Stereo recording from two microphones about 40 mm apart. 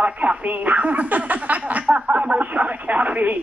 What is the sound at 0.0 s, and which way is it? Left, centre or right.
Speech, right.